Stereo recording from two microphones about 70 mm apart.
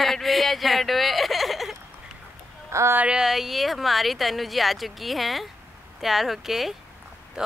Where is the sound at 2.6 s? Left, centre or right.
Right.